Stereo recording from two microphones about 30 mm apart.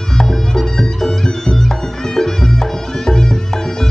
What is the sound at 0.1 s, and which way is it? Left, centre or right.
Music, centre.